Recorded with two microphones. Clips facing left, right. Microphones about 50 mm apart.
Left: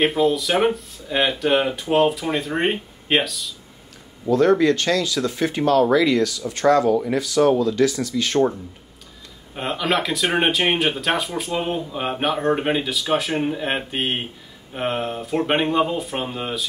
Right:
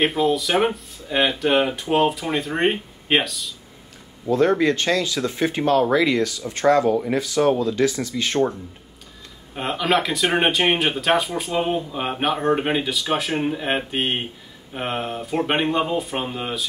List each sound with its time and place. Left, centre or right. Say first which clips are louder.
0.0 s speech: left 1 dB; centre
4.3 s speech: left 2 dB; right
9.6 s speech: right 1 dB; centre